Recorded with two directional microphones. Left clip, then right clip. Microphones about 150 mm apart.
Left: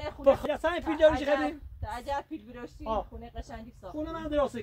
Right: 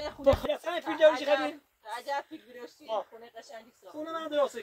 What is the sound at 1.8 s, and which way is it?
Speech, 35° left (ahead or behind).